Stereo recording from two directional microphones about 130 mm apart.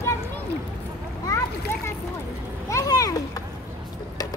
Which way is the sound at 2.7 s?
25° left (ahead or behind).